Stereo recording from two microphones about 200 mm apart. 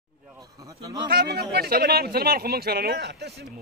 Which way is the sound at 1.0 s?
50° right (ahead or behind).